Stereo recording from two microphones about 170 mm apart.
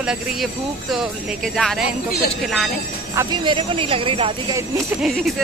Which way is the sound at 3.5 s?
30° right (ahead or behind).